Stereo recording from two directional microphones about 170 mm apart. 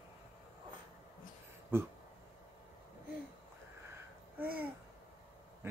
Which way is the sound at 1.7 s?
15° right (ahead or behind).